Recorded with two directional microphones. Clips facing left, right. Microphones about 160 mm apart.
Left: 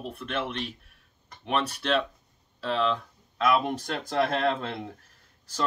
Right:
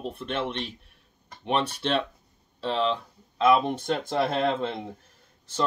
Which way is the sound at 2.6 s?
30° right (ahead or behind).